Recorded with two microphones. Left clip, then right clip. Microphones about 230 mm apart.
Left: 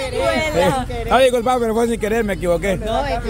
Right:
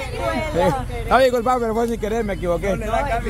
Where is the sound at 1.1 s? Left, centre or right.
Centre.